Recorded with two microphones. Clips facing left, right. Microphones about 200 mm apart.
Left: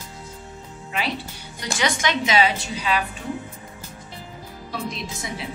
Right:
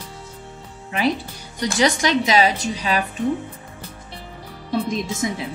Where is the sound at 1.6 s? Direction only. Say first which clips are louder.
Right 6 dB; 35° right (ahead or behind).